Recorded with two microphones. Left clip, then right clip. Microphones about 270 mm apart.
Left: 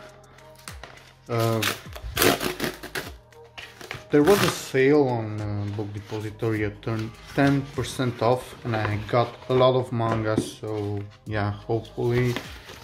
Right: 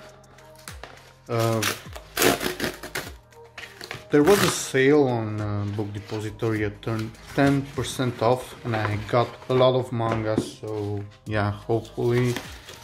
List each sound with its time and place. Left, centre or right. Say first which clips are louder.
0.7 s music: even; centre
3.9 s speech: even; centre
6.2 s speech: even; centre
11.2 s speech: right 2 dB; centre